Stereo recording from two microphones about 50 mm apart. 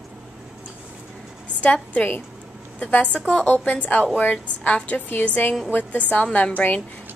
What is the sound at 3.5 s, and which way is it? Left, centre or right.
A woman's voice, left.